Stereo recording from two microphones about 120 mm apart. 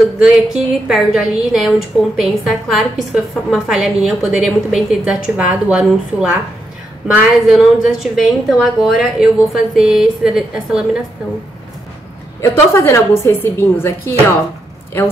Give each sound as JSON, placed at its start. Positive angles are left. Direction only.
{"t": 0.2, "sound": "a woman's voice", "side_deg": -5}
{"t": 12.4, "sound": "a woman's voice", "side_deg": 20}